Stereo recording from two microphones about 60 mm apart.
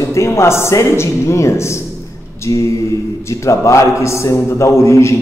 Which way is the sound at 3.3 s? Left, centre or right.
Left.